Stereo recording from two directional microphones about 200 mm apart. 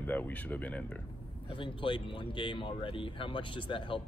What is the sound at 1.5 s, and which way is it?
Speech, 25° left (ahead or behind).